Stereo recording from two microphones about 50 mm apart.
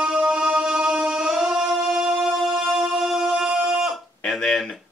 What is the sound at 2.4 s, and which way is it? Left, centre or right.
Music, centre.